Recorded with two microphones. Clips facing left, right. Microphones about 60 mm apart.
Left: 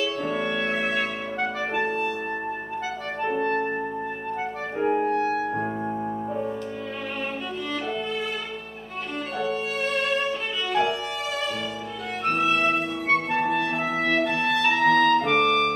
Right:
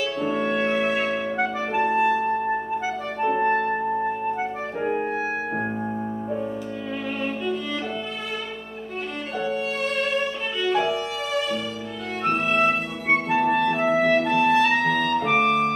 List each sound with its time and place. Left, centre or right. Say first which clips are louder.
0.2 s music: right 3 dB; centre
1.7 s clarinet: right 9 dB; centre
3.3 s clarinet: right 4 dB; right
4.9 s music: left 2 dB; centre
9.4 s violin: right 1 dB; centre
12.3 s music: right 1 dB; centre
15.0 s clarinet: left 1 dB; centre